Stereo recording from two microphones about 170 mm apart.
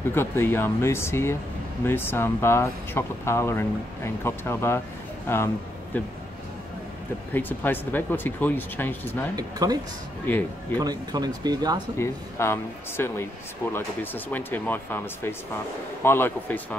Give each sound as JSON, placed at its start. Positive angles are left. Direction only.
{"t": 0.1, "sound": "speech", "side_deg": 15}
{"t": 7.3, "sound": "speech", "side_deg": 10}
{"t": 9.3, "sound": "speech", "side_deg": -20}
{"t": 10.2, "sound": "speech", "side_deg": 10}
{"t": 10.8, "sound": "speech", "side_deg": -25}
{"t": 12.0, "sound": "speech", "side_deg": 15}